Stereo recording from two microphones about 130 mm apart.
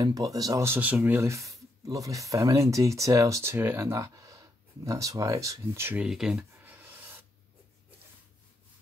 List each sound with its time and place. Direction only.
0.0 s speech: 25° right (ahead or behind)
5.9 s speech: 5° right (ahead or behind)
6.6 s a sound: 15° right (ahead or behind)